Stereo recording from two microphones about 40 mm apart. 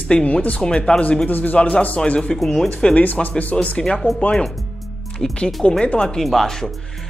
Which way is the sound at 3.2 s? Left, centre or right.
Left.